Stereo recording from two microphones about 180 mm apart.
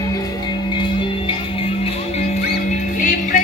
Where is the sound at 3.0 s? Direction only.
45° left (ahead or behind).